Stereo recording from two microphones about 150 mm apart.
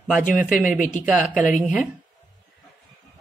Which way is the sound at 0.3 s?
5° right (ahead or behind).